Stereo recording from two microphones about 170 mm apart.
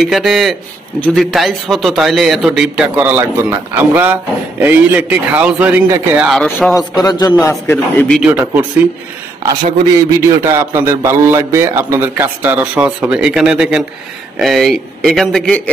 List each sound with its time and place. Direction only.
0.0 s a man's voice: centre (ahead or behind)
7.0 s a man's voice: 20° left (ahead or behind)
7.7 s a man's voice: 5° left (ahead or behind)
8.2 s a man's voice: 5° right (ahead or behind)
10.4 s a man's voice: 15° right (ahead or behind); by 15.7 s 5° left (ahead or behind)